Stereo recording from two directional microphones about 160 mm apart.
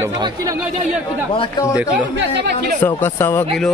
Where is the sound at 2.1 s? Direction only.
90° right.